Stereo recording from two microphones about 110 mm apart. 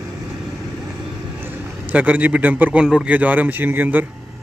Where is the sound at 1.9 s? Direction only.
10° right (ahead or behind).